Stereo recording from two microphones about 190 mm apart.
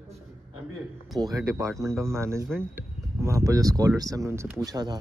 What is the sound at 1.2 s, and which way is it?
Speech, 15° right (ahead or behind).